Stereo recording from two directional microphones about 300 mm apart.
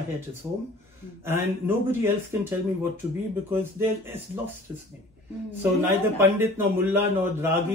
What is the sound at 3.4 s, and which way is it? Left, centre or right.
Speech, centre.